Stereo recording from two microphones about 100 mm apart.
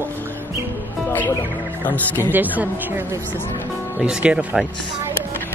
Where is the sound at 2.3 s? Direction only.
15° right (ahead or behind).